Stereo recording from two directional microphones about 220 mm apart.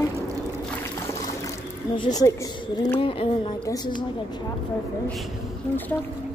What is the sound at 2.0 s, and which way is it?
A woman's voice, 15° left (ahead or behind).